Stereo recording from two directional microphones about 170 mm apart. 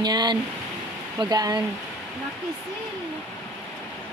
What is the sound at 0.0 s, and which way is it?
Speech, 25° right (ahead or behind).